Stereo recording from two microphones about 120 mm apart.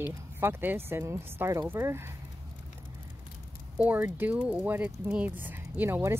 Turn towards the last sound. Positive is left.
turn(degrees=-15)  # may be behind; listen again after turning